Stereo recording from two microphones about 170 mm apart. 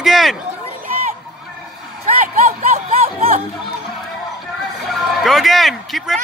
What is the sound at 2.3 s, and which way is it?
Music, 50° right (ahead or behind).